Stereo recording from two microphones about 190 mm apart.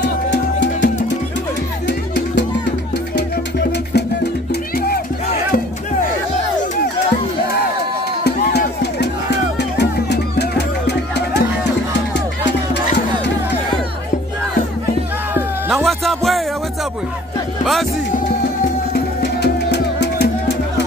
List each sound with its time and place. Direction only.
0.0 s music: 70° left (ahead or behind)
1.9 s music: 65° left (ahead or behind)
8.2 s music: 60° left (ahead or behind)
15.3 s music: centre (ahead or behind)
19.4 s music: 60° left (ahead or behind)